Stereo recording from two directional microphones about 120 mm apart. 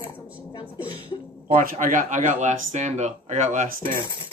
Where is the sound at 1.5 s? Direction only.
90° right.